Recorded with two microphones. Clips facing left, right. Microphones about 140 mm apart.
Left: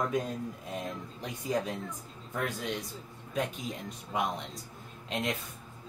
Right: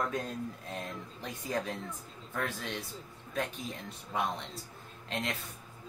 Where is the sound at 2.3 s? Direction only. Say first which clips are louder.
Left 2 dB; 15° left (ahead or behind).